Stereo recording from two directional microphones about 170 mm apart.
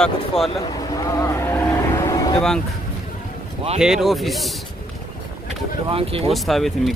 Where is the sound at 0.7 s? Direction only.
20° left (ahead or behind).